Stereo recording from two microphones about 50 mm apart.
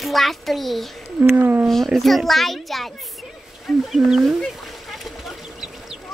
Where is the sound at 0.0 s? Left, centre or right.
Centre.